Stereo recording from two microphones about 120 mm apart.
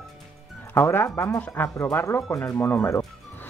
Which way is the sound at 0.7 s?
25° left (ahead or behind).